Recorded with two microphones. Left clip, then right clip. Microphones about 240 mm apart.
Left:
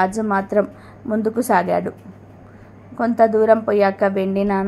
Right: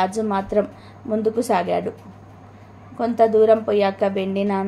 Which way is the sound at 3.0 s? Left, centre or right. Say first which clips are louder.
Left 1 dB; centre.